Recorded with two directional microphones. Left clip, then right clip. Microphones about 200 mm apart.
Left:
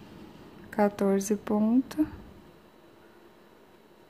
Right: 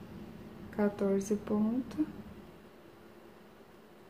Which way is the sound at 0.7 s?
35° left (ahead or behind).